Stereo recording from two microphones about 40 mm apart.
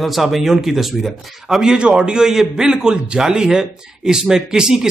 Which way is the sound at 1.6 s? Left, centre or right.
Right.